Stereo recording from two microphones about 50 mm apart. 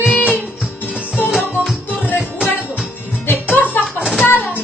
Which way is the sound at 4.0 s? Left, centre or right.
Centre.